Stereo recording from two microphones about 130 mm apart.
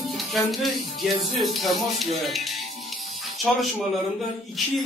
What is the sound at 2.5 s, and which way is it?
Music, 55° left (ahead or behind).